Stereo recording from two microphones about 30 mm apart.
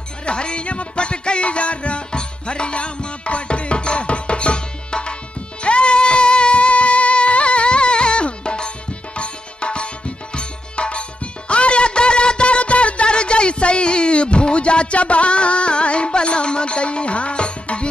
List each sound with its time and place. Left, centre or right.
0.2 s music: left